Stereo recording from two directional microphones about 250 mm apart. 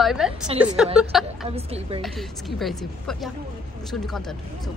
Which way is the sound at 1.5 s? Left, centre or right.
Right.